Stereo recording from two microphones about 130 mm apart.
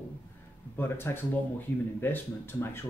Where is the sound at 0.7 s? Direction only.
15° left (ahead or behind).